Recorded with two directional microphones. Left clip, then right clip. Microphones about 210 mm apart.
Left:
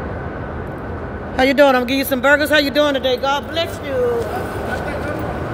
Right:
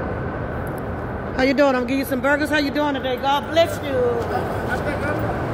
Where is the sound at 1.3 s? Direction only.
35° left (ahead or behind); by 3.2 s 50° left (ahead or behind).